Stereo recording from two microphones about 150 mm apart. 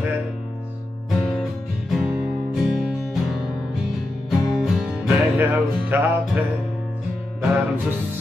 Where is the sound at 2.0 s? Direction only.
5° right (ahead or behind).